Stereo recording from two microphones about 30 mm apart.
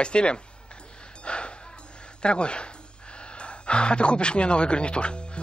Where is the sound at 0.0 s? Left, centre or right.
Left.